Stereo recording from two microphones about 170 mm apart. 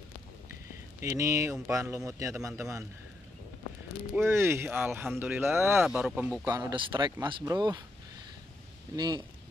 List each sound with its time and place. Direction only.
1.0 s speech: 20° right (ahead or behind)
4.1 s speech: 15° right (ahead or behind)
6.4 s speech: 15° right (ahead or behind)
6.7 s speech: 25° right (ahead or behind)
8.9 s speech: 25° right (ahead or behind)